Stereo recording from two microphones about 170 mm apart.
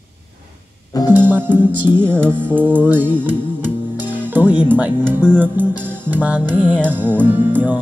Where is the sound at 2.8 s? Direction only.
10° right (ahead or behind).